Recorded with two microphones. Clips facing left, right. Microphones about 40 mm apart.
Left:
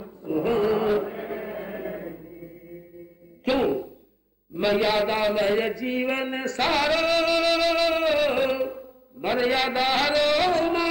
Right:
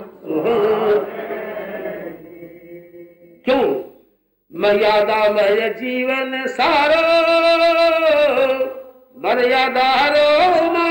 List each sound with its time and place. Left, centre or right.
0.0 s chant: right
3.4 s music: right
4.6 s a sound: right